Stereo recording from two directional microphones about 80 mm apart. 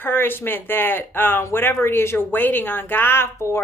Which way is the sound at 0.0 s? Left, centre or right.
Left.